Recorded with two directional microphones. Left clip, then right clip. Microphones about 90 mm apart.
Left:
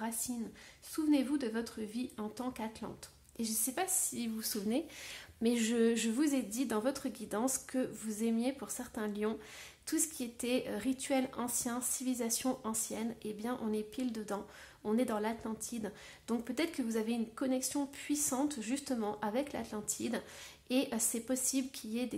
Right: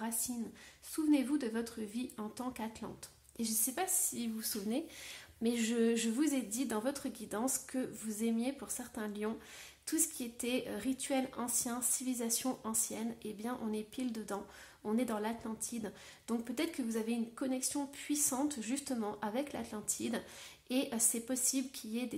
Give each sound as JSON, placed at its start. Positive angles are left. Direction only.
{"t": 0.9, "sound": "a woman's voice", "side_deg": 20}